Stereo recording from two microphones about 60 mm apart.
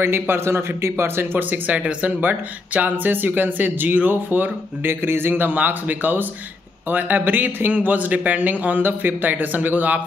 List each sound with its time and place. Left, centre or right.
0.0 s speech: right
1.4 s a man's voice: right